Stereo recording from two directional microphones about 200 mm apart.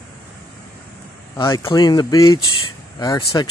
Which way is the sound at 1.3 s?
15° left (ahead or behind).